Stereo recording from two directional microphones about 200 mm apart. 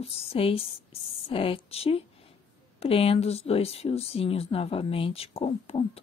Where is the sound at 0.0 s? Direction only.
30° left (ahead or behind).